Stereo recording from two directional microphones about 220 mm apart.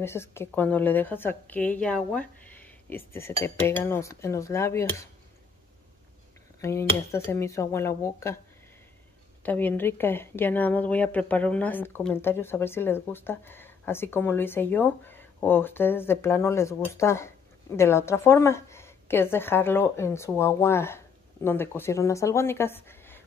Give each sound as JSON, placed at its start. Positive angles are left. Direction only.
{"t": 0.0, "sound": "a woman's voice", "side_deg": 10}
{"t": 6.6, "sound": "a woman's voice", "side_deg": 10}
{"t": 9.4, "sound": "a woman's voice", "side_deg": 5}